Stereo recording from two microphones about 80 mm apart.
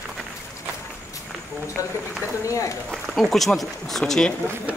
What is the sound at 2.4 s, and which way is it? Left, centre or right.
Speech, left.